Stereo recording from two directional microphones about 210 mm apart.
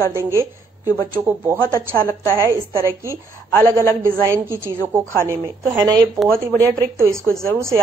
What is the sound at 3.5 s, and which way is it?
Speech, 10° left (ahead or behind).